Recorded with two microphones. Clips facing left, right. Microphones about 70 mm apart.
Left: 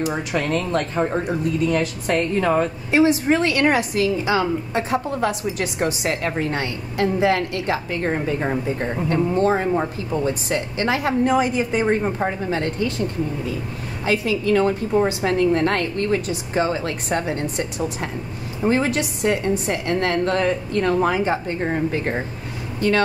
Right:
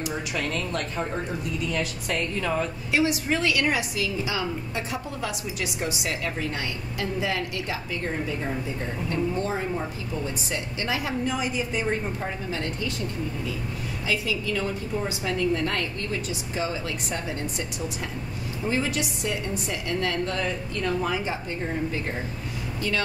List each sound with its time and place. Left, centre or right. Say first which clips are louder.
0.0 s a woman's voice: left 6 dB; left
14.0 s a woman's voice: left 8 dB; left